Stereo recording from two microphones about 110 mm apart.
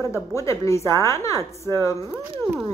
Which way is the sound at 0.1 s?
30° left (ahead or behind).